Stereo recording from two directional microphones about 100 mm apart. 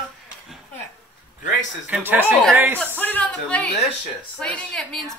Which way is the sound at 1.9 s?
15° right (ahead or behind).